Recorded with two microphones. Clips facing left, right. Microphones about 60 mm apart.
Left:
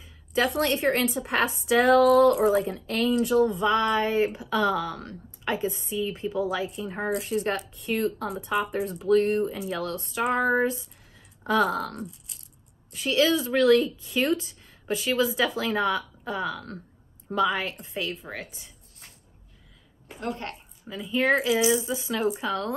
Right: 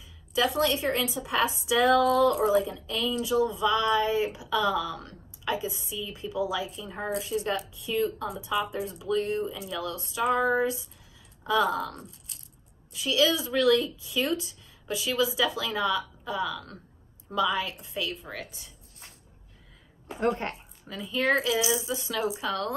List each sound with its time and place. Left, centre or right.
0.0 s speech: left
12.9 s speech: left
20.2 s a woman's voice: right
21.1 s speech: left
22.5 s speech: left